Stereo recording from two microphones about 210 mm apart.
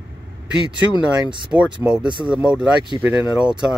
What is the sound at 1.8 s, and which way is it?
Speech, 5° right (ahead or behind).